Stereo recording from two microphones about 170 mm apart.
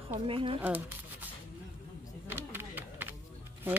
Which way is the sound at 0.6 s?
10° right (ahead or behind).